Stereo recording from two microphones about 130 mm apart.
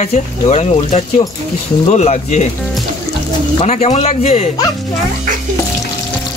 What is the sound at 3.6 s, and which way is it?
Speech, 60° left (ahead or behind).